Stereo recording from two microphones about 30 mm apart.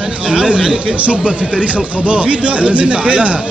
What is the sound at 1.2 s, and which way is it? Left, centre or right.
A man's voice, right.